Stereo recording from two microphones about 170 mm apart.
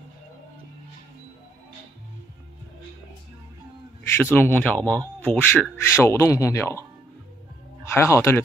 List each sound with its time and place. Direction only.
4.2 s a man's voice: 10° left (ahead or behind)
7.9 s a man's voice: 15° left (ahead or behind)